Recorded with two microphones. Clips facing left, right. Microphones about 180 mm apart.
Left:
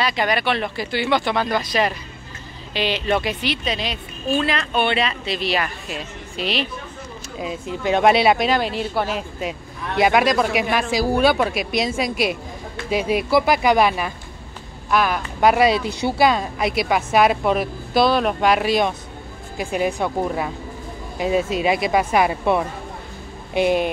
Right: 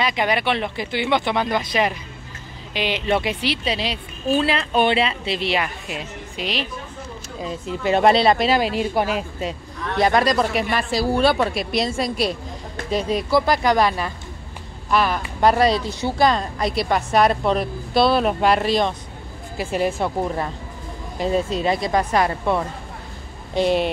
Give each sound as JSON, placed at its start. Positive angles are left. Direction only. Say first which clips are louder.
{"t": 0.0, "sound": "a woman's voice", "louder": "even", "side_deg": -20}
{"t": 7.3, "sound": "speech", "louder": "left 1 dB", "side_deg": 0}
{"t": 9.4, "sound": "speech", "louder": "even", "side_deg": 5}
{"t": 12.9, "sound": "speech", "louder": "left 1 dB", "side_deg": 10}
{"t": 14.9, "sound": "speech", "louder": "even", "side_deg": 0}